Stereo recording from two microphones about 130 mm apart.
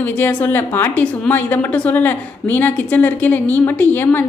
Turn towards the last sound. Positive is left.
turn(degrees=15)  # may be behind; listen again after turning